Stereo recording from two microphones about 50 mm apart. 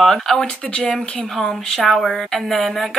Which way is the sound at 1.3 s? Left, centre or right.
Centre.